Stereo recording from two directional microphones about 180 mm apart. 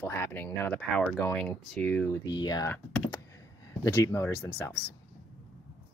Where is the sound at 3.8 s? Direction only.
15° left (ahead or behind).